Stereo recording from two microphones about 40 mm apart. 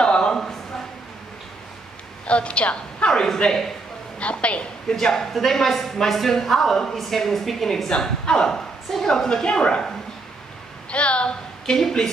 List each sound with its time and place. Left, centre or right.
0.0 s a sound: centre
2.2 s a woman's voice: left
4.2 s a woman's voice: left
4.8 s a woman's voice: centre
10.9 s a woman's voice: left
11.6 s a woman's voice: centre